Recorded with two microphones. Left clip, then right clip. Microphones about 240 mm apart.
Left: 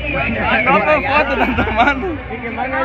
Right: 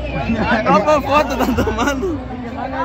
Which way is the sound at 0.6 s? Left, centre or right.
Right.